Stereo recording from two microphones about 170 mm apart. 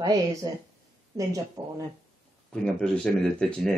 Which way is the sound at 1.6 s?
20° right (ahead or behind).